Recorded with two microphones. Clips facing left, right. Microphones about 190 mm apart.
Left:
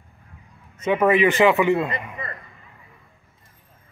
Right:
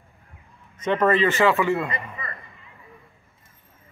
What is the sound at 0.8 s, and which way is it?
Speech, 10° left (ahead or behind).